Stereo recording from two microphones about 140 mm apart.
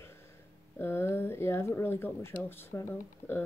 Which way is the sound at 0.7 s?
15° left (ahead or behind).